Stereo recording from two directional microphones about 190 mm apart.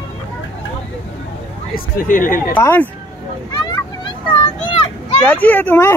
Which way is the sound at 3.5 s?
20° left (ahead or behind).